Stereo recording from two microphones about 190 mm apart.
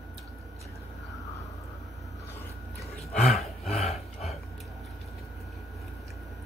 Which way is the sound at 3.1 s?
Centre (ahead or behind).